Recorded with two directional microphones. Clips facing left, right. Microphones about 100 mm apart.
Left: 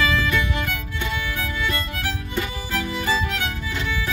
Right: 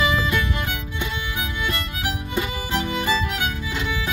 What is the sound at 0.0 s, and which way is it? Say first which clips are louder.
Music: even; 20° right (ahead or behind).